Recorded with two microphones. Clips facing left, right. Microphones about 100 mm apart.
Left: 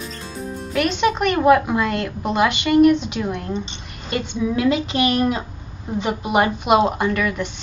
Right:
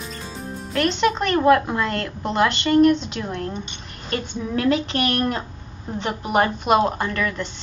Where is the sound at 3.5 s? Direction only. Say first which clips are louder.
Left 5 dB; 30° left (ahead or behind).